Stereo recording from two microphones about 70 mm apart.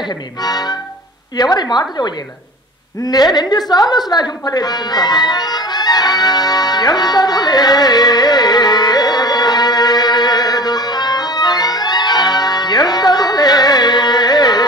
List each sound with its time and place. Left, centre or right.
0.4 s a woman's voice: left
3.0 s a woman's voice: left
4.5 s music: left